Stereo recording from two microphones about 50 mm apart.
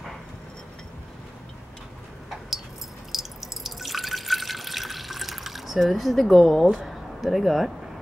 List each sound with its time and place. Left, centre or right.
3.1 s drip: centre
6.7 s speech: centre